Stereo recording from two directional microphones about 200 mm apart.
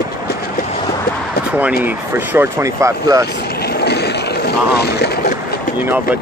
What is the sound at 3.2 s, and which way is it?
Vehicle, 55° left (ahead or behind).